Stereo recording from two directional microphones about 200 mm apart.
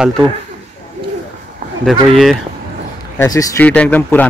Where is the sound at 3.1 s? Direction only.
15° left (ahead or behind).